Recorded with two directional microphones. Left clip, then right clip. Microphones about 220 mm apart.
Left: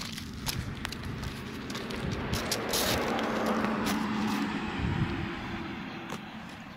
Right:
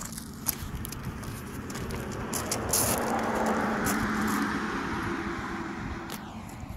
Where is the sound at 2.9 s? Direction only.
35° left (ahead or behind).